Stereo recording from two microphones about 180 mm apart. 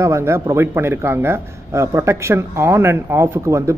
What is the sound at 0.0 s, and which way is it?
A man's voice, 15° right (ahead or behind).